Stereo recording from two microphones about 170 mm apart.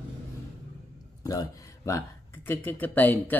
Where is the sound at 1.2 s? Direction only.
20° left (ahead or behind).